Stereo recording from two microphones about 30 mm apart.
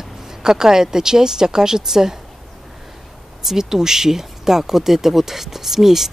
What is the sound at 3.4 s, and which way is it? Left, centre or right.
Speech, centre.